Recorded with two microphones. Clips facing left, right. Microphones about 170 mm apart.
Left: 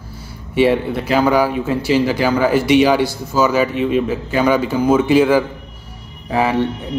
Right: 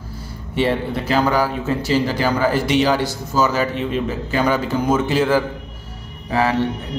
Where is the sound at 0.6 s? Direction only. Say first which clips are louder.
Left 5 dB; 10° left (ahead or behind).